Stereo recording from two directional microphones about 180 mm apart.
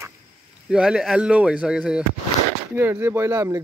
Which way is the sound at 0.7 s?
5° right (ahead or behind).